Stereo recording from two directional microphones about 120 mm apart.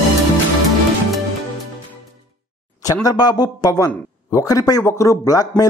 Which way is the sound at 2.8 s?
30° left (ahead or behind).